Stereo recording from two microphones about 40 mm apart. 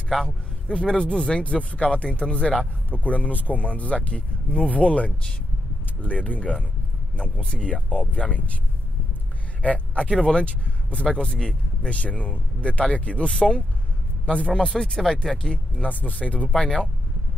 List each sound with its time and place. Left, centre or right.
0.1 s a man's voice: centre
0.7 s speech: centre; by 6.5 s left
7.2 s speech: left
7.9 s speech: left
9.6 s speech: left; by 15.5 s centre
15.5 s speech: left
16.6 s speech: centre